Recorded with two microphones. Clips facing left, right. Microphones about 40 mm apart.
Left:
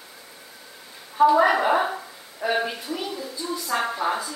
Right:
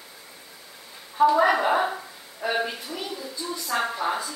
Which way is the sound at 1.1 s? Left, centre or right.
Centre.